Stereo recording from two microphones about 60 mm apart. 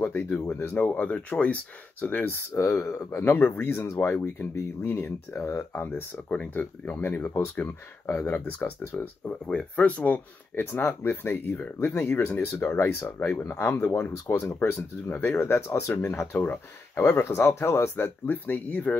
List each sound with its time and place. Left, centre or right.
0.0 s speech: left
2.9 s speech: left
3.3 s speech: left
3.7 s speech: left
5.8 s speech: left
9.5 s speech: left
10.5 s speech: left
14.4 s speech: left
17.5 s speech: left